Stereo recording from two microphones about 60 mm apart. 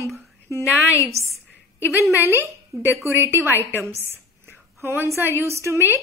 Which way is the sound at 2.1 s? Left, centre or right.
Right.